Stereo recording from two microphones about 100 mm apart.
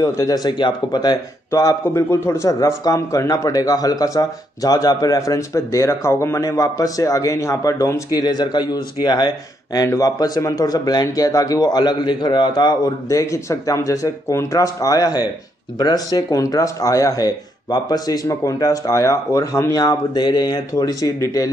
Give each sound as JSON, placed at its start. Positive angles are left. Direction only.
{"t": 0.0, "sound": "speech", "side_deg": 35}
{"t": 1.5, "sound": "speech", "side_deg": 30}